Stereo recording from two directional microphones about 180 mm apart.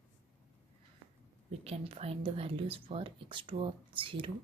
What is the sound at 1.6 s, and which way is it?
Speech, 35° right (ahead or behind).